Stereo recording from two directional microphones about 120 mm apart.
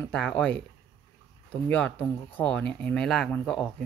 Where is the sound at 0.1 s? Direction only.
5° left (ahead or behind).